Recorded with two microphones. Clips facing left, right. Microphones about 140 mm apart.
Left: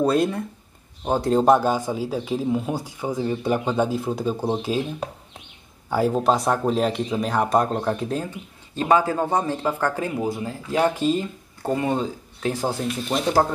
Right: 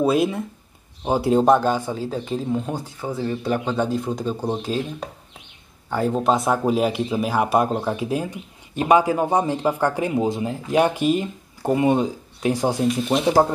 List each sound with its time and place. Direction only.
0.0 s speech: centre (ahead or behind)